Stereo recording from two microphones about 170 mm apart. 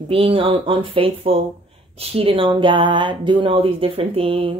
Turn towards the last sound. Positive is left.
turn(degrees=-35)  # may be behind; listen again after turning